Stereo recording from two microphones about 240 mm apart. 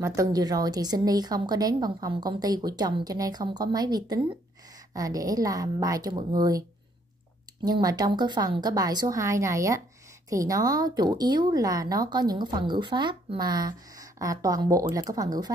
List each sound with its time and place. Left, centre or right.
0.0 s a woman's voice: centre
7.6 s a woman's voice: centre